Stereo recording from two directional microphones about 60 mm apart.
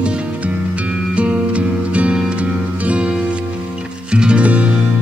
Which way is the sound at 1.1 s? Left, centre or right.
Centre.